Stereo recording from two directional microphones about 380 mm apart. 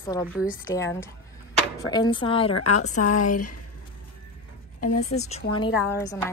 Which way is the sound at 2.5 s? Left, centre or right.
Left.